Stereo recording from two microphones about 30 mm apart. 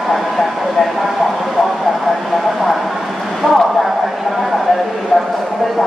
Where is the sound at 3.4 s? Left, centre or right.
Centre.